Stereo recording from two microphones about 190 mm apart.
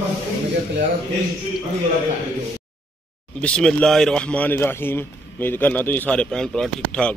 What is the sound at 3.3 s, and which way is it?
Speech, 5° left (ahead or behind).